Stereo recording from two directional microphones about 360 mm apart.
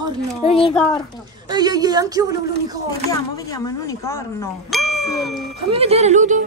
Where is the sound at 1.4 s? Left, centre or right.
Centre.